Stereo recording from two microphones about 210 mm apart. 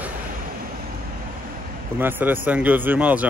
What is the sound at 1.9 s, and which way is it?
Speech, 10° right (ahead or behind).